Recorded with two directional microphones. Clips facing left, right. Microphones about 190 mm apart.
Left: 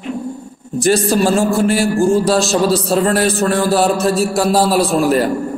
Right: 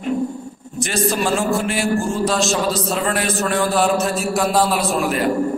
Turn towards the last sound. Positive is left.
turn(degrees=35)  # may be behind; listen again after turning